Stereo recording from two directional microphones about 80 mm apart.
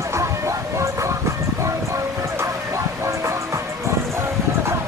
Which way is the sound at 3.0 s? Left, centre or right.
Right.